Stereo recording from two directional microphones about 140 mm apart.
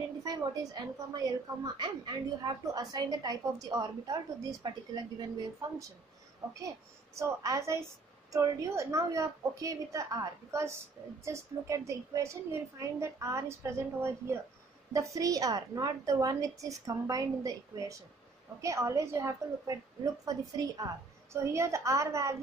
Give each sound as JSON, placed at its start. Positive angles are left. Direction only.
{"t": 0.2, "sound": "a woman's voice", "side_deg": -25}